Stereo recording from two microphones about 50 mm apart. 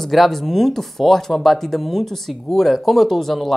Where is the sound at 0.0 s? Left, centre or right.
Centre.